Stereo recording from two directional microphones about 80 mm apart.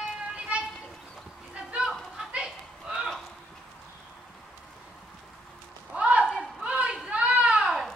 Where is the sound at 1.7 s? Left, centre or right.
Centre.